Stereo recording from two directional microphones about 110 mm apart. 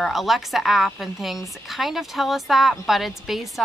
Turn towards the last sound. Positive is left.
turn(degrees=0)  # may be behind; listen again after turning